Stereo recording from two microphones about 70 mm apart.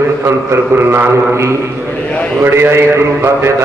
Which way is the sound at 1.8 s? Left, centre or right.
Centre.